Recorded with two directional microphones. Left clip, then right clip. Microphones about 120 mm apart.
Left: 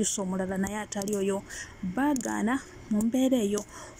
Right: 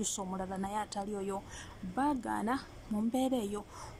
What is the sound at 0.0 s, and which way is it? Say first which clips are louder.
Speech: left 7 dB; 10° left (ahead or behind).